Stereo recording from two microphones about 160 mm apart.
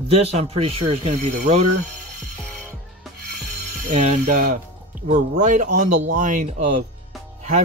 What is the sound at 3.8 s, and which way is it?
Speech, 45° right (ahead or behind).